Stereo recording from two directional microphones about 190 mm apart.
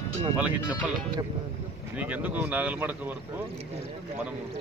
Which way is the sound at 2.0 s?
10° right (ahead or behind).